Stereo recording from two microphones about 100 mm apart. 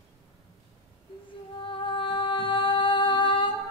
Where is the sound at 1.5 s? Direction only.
60° left (ahead or behind).